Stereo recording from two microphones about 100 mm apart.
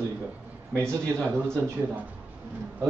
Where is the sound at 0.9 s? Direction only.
10° left (ahead or behind).